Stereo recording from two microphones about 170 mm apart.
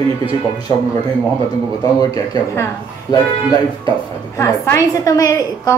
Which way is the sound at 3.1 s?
25° left (ahead or behind).